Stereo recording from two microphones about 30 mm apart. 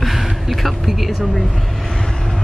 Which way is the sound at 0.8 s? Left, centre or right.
Centre.